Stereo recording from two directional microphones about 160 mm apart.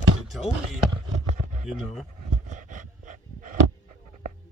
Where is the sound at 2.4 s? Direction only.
55° right (ahead or behind).